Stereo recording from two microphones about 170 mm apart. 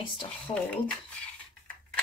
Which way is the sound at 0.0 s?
30° left (ahead or behind).